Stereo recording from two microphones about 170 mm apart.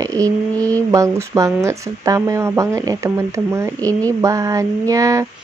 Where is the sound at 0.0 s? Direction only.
20° right (ahead or behind).